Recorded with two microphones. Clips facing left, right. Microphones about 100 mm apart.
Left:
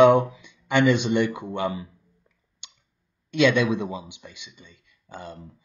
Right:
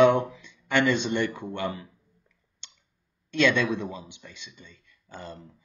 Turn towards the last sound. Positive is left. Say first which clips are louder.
# left 2 dB
turn(degrees=15)  # may be behind; listen again after turning